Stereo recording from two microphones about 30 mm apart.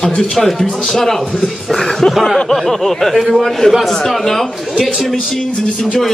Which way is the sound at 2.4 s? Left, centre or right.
Centre.